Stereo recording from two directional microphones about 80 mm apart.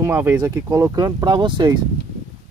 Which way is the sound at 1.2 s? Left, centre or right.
Right.